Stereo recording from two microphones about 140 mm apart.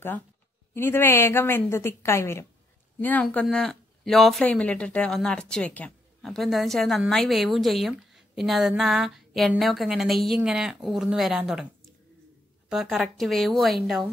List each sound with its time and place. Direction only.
0.7 s a woman's voice: 15° left (ahead or behind); by 11.6 s 5° right (ahead or behind)
13.0 s speech: centre (ahead or behind)